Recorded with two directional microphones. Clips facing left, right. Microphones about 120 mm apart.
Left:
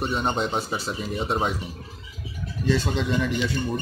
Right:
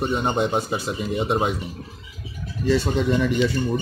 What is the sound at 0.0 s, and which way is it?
Speech, 15° right (ahead or behind).